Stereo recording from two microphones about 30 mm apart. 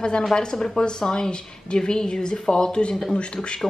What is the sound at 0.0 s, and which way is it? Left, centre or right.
Speech, left.